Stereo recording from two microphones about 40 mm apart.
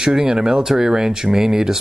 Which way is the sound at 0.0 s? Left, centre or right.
Centre.